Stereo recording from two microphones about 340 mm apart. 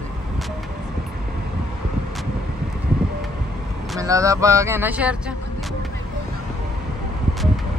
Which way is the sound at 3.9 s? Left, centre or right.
Centre.